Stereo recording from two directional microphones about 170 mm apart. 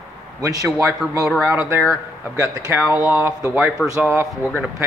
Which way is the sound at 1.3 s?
5° right (ahead or behind).